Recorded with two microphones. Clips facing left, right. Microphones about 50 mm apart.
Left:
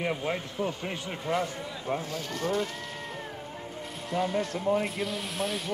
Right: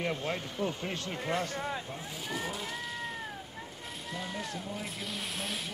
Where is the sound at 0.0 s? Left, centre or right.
Centre.